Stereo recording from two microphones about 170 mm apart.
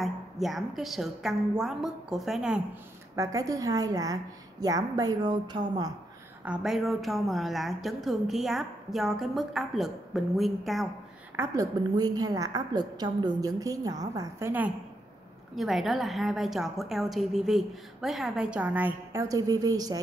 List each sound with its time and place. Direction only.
0.0 s a woman's voice: centre (ahead or behind)
3.2 s a woman's voice: 20° right (ahead or behind)
6.4 s speech: 5° right (ahead or behind)
11.3 s a woman's voice: 20° right (ahead or behind)
15.5 s speech: centre (ahead or behind); by 20.0 s 20° right (ahead or behind)